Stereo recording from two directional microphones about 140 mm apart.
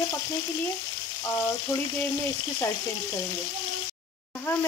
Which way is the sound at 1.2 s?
20° left (ahead or behind).